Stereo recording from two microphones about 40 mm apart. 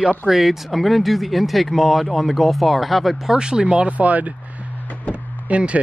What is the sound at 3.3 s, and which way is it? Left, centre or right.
Speech, centre.